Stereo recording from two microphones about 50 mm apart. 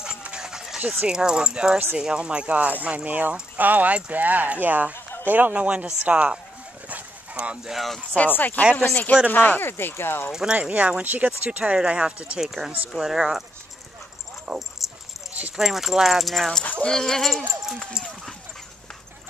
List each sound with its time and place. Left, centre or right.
0.4 s dog: centre
1.0 s speech: centre; by 5.6 s right
5.6 s speech: right
6.9 s dog: right
7.6 s speech: centre
8.3 s speech: left
10.3 s speech: centre
12.4 s speech: centre
14.5 s speech: right
15.5 s speech: centre